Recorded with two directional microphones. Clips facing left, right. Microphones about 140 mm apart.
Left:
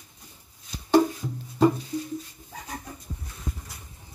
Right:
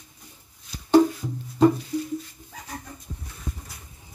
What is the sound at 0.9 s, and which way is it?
Music, 5° left (ahead or behind).